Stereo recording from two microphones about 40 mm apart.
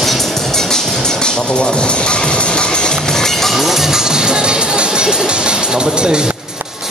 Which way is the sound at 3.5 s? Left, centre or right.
Centre.